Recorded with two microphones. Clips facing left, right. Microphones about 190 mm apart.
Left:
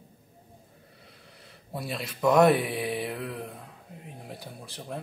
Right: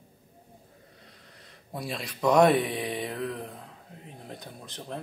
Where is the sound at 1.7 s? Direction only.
5° left (ahead or behind).